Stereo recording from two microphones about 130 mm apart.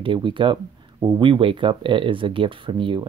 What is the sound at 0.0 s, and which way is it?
Speech, 40° right (ahead or behind).